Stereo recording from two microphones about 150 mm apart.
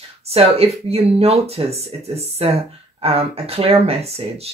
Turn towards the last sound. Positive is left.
turn(degrees=-45)  # may be behind; listen again after turning